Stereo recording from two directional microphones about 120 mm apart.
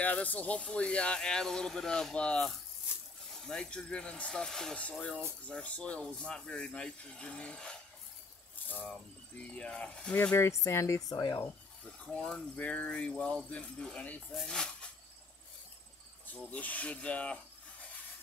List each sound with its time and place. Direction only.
0.0 s speech: 10° left (ahead or behind)
8.8 s speech: 10° left (ahead or behind)
10.1 s speech: 20° left (ahead or behind)
12.0 s speech: 5° left (ahead or behind)
16.3 s speech: 10° left (ahead or behind)